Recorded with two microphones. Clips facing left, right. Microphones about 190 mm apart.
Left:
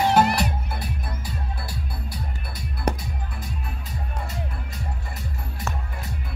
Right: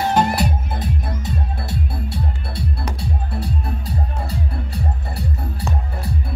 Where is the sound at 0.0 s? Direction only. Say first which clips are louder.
Right 1 dB; 10° left (ahead or behind).